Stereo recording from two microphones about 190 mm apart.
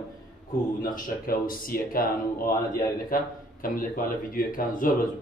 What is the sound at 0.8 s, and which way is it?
A man's voice, 45° left (ahead or behind).